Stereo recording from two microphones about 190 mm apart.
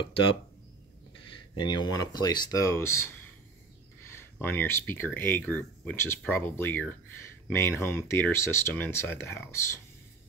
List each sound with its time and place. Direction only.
0.0 s speech: 30° left (ahead or behind)